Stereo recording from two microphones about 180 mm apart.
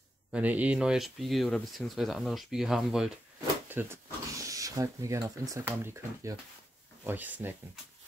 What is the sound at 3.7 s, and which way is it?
Speech, 15° right (ahead or behind).